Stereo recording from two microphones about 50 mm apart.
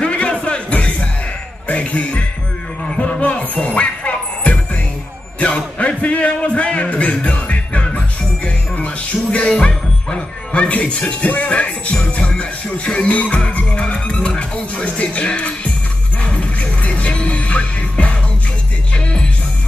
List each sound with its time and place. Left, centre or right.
0.0 s music: left
9.5 s music: centre